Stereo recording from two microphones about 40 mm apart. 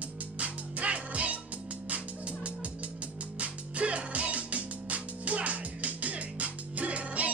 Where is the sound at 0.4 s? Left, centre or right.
Right.